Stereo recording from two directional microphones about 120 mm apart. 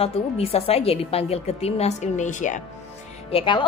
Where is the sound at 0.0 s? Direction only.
55° left (ahead or behind); by 2.6 s 90° left.